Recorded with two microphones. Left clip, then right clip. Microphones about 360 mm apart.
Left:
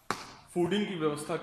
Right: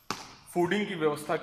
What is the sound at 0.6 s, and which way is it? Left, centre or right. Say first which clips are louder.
Speech: right 2 dB; right.